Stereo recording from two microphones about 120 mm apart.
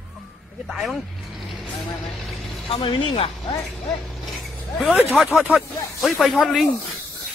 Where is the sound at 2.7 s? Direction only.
45° left (ahead or behind).